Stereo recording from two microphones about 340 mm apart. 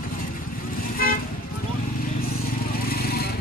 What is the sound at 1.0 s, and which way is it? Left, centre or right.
Toot, left.